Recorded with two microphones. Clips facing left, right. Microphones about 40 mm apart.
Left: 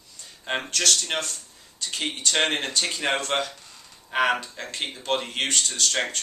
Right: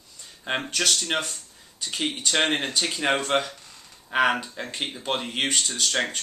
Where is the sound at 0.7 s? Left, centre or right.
Centre.